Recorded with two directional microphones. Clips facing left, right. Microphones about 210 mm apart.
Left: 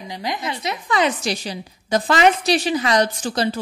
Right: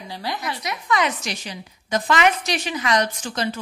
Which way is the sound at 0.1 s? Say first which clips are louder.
Left 2 dB; 20° left (ahead or behind).